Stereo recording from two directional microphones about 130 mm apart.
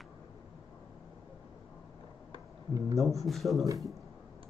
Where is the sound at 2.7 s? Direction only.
25° right (ahead or behind).